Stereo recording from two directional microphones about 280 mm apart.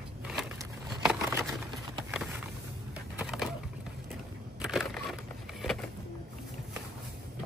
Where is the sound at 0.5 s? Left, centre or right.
Centre.